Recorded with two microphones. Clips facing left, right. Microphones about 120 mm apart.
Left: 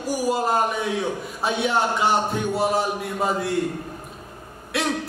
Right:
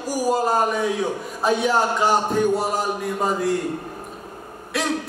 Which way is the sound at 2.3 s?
Centre (ahead or behind).